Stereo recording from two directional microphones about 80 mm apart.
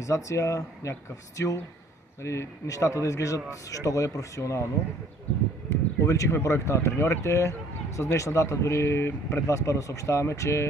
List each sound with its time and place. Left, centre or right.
0.0 s speech: left
5.7 s speech: left